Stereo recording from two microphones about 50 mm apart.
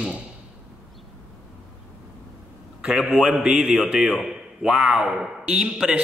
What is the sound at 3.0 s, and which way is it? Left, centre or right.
Speech, centre.